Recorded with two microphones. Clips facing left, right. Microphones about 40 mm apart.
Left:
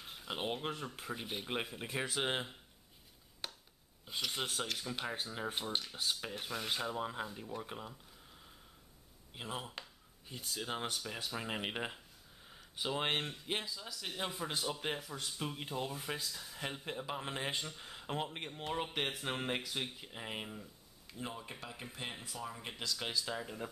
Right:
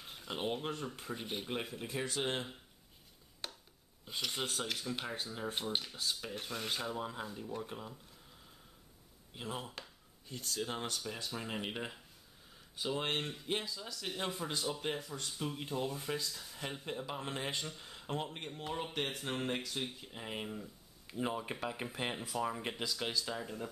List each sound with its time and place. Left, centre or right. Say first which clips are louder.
0.0 s speech: right 1 dB; centre
3.4 s a sound: even; centre
4.0 s speech: even; centre
5.9 s speech: left 1 dB; centre
6.3 s speech: even; centre
9.3 s speech: even; centre
13.2 s speech: right 1 dB; centre
21.1 s speech: right 7 dB; centre